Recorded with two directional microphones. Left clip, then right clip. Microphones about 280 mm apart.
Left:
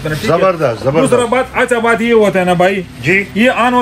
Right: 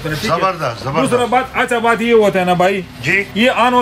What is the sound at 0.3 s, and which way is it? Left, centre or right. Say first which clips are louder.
A man's voice: left 5 dB; centre.